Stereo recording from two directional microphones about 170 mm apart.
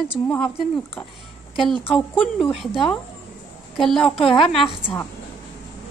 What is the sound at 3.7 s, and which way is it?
Speech, 5° left (ahead or behind).